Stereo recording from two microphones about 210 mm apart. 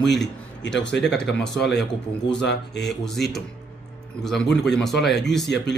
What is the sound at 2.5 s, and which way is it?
Speech, 55° left (ahead or behind).